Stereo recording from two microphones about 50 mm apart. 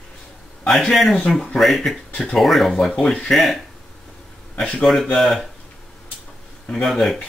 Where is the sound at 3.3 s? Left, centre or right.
Centre.